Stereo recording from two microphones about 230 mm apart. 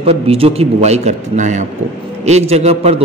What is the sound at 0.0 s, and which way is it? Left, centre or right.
A man's voice, right.